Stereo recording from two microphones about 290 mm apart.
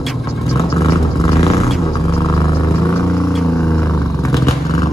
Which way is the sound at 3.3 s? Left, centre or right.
Centre.